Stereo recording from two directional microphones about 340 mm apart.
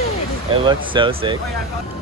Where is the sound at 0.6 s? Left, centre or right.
Centre.